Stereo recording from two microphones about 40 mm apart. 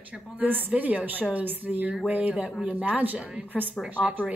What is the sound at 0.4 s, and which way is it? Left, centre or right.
A woman's voice, right.